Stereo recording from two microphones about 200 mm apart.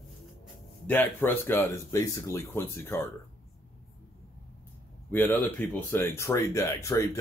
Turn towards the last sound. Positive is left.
turn(degrees=15)  # may be behind; listen again after turning